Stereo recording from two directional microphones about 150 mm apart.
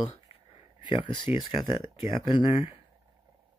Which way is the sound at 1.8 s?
30° left (ahead or behind).